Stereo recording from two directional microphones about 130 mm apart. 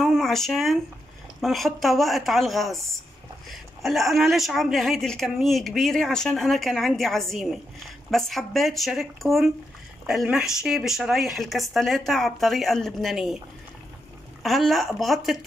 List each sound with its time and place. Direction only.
0.0 s a sound: centre (ahead or behind)
1.4 s a woman's voice: centre (ahead or behind)
14.4 s a woman's voice: centre (ahead or behind)